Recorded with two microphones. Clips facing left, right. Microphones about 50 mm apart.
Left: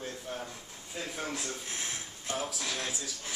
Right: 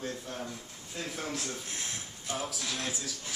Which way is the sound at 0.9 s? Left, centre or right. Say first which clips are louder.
Even; centre.